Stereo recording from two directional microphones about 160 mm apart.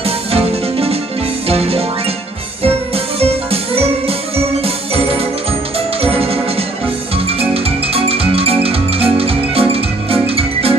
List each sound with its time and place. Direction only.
0.0 s music: 40° right (ahead or behind)
4.6 s music: 35° right (ahead or behind)